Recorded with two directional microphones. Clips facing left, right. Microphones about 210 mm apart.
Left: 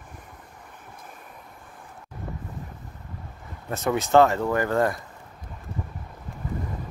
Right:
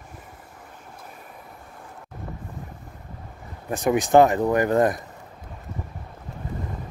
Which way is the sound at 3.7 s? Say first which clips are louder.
Right 3 dB; 15° right (ahead or behind).